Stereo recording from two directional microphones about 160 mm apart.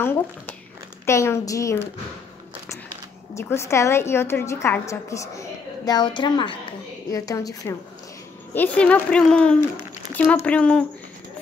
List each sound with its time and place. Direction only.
0.0 s a woman's voice: 15° left (ahead or behind)
3.3 s a woman's voice: 15° left (ahead or behind)
8.5 s a woman's voice: 10° left (ahead or behind)